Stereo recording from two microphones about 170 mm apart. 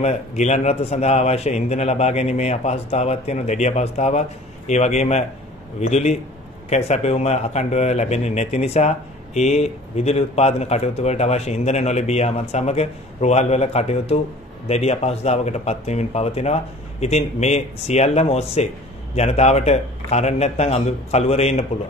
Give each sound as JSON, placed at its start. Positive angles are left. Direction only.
{"t": 0.0, "sound": "a man's voice", "side_deg": 40}